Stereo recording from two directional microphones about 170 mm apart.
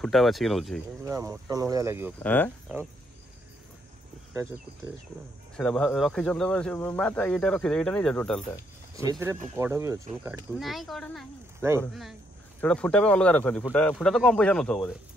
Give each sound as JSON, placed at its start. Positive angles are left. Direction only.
{"t": 0.0, "sound": "speech", "side_deg": 0}
{"t": 1.0, "sound": "speech", "side_deg": -20}
{"t": 2.1, "sound": "speech", "side_deg": 10}
{"t": 4.3, "sound": "speech", "side_deg": -15}
{"t": 5.6, "sound": "speech", "side_deg": 5}
{"t": 9.2, "sound": "speech", "side_deg": -15}
{"t": 10.6, "sound": "speech", "side_deg": 0}